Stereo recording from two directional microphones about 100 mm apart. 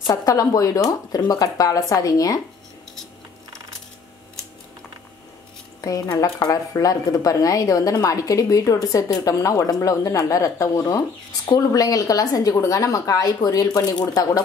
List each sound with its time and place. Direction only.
0.0 s a woman's voice: 40° left (ahead or behind)
5.8 s a woman's voice: 35° left (ahead or behind)